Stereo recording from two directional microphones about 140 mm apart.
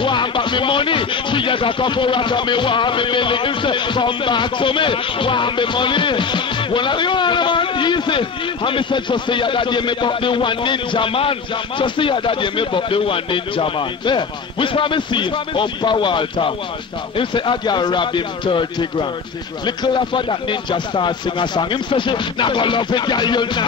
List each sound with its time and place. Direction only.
0.0 s speech: 35° left (ahead or behind)